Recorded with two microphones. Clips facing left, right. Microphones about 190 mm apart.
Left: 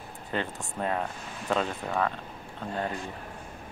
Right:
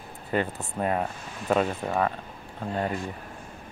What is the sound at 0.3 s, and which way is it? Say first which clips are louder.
Speech: right 5 dB; 10° right (ahead or behind).